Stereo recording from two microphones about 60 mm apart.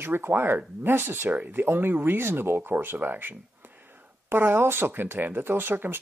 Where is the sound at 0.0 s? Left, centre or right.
Right.